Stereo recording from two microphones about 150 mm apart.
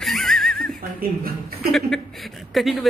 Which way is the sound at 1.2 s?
80° right.